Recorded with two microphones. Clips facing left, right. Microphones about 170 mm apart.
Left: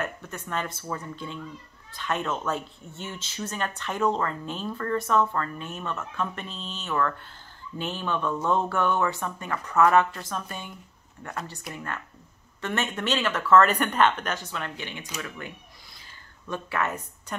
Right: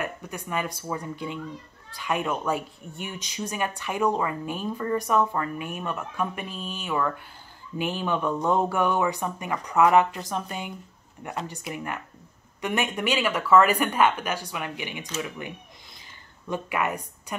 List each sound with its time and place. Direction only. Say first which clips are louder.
0.0 s a woman's voice: right 1 dB; 10° right (ahead or behind)